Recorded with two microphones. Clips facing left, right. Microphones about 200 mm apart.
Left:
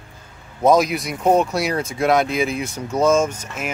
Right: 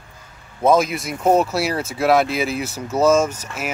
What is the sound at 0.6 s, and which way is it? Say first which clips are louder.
Speech: left 1 dB; centre (ahead or behind).